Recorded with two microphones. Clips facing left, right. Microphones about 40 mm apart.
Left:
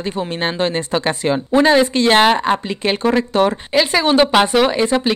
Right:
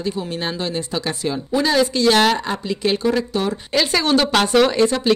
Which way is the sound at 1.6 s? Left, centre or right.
Left.